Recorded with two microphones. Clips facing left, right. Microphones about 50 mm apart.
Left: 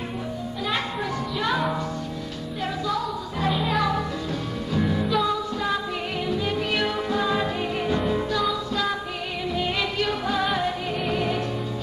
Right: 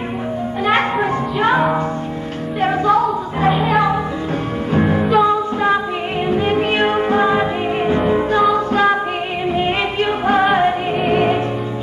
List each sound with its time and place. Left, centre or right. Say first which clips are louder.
0.7 s music: right 12 dB; right
4.7 s music: right 9 dB; right